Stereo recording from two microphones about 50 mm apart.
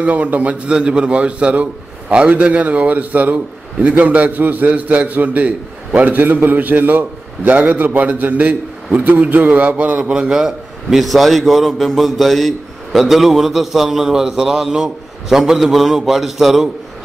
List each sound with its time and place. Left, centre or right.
0.0 s a man's voice: right
0.7 s a man's voice: centre
10.1 s a man's voice: centre